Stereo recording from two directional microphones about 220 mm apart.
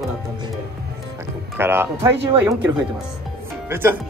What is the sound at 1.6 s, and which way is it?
Speech, 10° right (ahead or behind).